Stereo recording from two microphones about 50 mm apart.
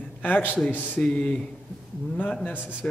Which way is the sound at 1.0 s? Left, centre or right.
Centre.